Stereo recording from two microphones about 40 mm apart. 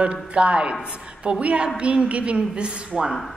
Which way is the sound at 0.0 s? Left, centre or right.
Right.